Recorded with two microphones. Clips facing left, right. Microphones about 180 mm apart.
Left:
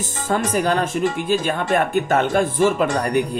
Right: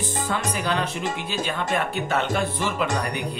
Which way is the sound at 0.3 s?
45° left (ahead or behind).